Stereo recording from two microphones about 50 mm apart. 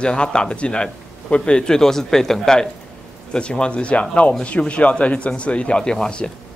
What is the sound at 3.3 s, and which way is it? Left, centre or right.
A man's voice, left.